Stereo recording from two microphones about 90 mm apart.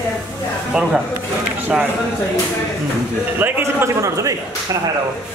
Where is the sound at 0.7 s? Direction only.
10° right (ahead or behind).